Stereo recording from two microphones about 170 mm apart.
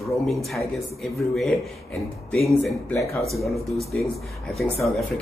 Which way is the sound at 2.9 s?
15° left (ahead or behind).